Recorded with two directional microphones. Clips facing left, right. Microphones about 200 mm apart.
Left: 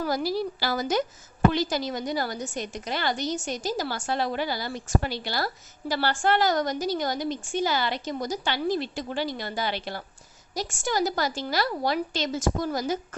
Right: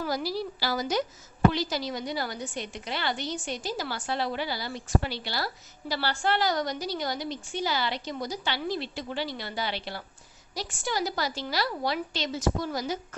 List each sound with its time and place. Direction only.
0.0 s a woman's voice: 50° left (ahead or behind)